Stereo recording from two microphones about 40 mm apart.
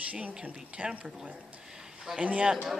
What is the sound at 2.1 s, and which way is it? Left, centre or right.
Speech, right.